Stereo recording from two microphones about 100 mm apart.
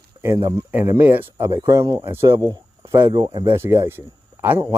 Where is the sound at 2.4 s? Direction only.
40° right (ahead or behind).